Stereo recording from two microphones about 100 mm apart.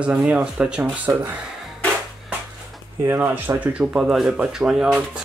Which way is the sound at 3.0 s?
20° right (ahead or behind).